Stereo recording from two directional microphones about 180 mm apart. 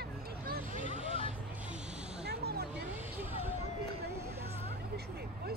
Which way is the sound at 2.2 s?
65° right (ahead or behind).